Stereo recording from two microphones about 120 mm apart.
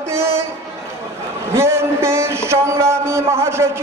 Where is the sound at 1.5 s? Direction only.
20° right (ahead or behind).